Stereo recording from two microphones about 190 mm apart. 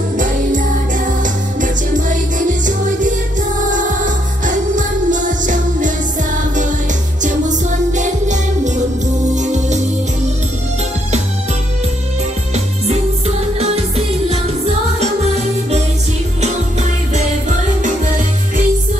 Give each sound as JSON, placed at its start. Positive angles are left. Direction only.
{"t": 0.2, "sound": "music", "side_deg": -45}
{"t": 7.2, "sound": "music", "side_deg": -40}
{"t": 12.5, "sound": "music", "side_deg": -35}
{"t": 17.1, "sound": "music", "side_deg": -40}